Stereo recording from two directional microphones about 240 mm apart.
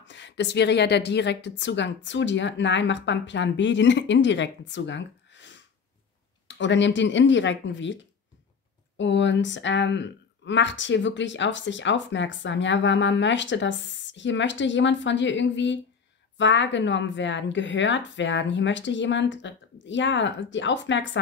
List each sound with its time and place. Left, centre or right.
0.0 s speech: left